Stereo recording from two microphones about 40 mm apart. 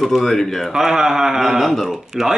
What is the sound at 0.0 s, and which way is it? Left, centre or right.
Speech, centre.